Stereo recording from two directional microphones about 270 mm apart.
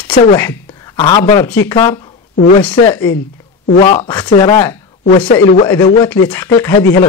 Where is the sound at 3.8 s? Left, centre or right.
Left.